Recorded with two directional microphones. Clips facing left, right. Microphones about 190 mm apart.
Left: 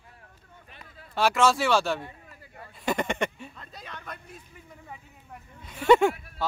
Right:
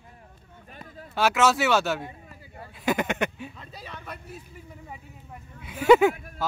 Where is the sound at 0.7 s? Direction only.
40° right (ahead or behind).